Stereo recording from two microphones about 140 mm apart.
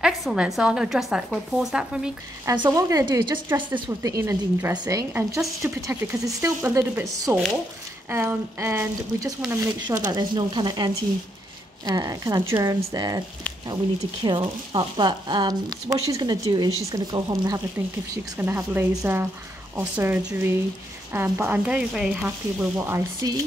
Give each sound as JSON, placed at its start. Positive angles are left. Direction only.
{"t": 0.0, "sound": "a woman's voice", "side_deg": -5}
{"t": 2.4, "sound": "a woman's voice", "side_deg": -30}
{"t": 3.4, "sound": "a woman's voice", "side_deg": -15}
{"t": 10.0, "sound": "a woman's voice", "side_deg": -35}
{"t": 14.2, "sound": "speech", "side_deg": -35}
{"t": 18.4, "sound": "speech", "side_deg": -15}